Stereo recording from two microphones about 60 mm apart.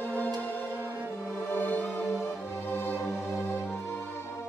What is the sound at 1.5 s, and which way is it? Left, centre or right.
Music, left.